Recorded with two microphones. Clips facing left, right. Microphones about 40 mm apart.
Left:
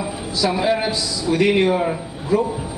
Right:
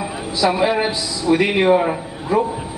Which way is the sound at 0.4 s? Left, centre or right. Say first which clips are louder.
Right 2 dB; centre.